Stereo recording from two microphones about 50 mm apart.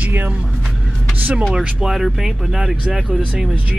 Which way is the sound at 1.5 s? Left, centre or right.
Centre.